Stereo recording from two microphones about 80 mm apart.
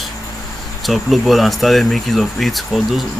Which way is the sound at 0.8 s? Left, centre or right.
Centre.